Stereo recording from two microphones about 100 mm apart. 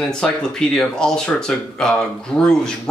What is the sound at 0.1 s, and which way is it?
Speech, 5° left (ahead or behind).